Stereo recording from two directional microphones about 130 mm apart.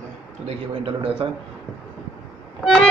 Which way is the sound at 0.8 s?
45° right (ahead or behind).